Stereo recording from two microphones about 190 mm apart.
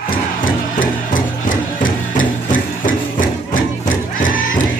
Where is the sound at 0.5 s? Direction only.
45° left (ahead or behind).